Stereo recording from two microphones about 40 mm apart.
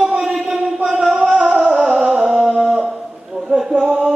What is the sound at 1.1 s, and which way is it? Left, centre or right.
Music, centre.